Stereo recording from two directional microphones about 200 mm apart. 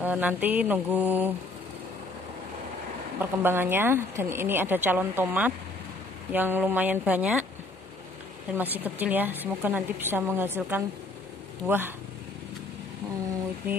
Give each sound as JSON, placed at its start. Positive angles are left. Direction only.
{"t": 0.0, "sound": "speech", "side_deg": -10}
{"t": 3.2, "sound": "speech", "side_deg": -10}
{"t": 8.5, "sound": "speech", "side_deg": -10}